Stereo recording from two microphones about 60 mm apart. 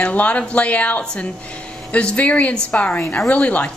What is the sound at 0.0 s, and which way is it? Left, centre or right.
A woman's voice, left.